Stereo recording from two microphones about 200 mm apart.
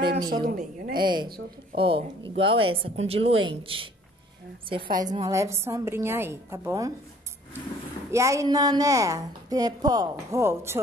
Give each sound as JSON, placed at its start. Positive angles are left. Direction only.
{"t": 0.3, "sound": "speech", "side_deg": -45}
{"t": 0.9, "sound": "a woman's voice", "side_deg": -20}
{"t": 8.1, "sound": "a woman's voice", "side_deg": -15}